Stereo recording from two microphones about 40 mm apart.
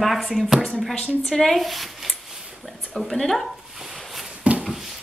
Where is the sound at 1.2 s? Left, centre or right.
Centre.